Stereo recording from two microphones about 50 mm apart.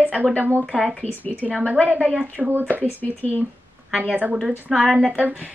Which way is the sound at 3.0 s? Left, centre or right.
Left.